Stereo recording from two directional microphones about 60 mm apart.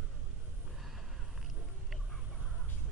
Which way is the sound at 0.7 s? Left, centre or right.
Centre.